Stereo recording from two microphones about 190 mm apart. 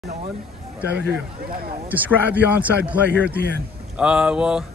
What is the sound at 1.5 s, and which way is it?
Speech, 50° right (ahead or behind).